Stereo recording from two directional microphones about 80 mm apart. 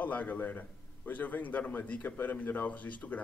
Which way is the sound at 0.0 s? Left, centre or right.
Left.